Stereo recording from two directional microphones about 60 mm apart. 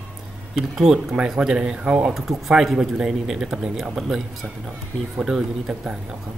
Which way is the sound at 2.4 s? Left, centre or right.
Centre.